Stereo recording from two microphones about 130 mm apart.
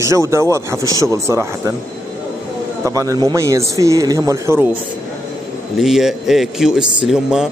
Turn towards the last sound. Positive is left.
turn(degrees=-5)  # may be behind; listen again after turning